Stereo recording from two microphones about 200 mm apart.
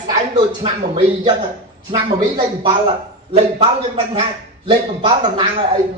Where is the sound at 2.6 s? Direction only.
30° right (ahead or behind).